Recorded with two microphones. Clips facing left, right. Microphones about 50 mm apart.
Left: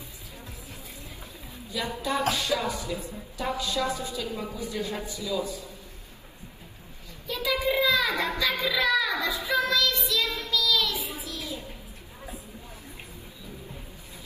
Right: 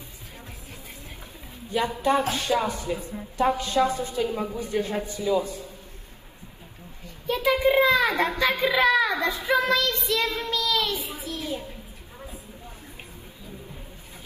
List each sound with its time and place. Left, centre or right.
1.7 s speech: right
7.2 s a sound: right
8.4 s child singing: right